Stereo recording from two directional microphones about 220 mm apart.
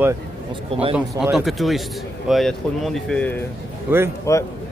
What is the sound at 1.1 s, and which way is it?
A man's voice, centre (ahead or behind).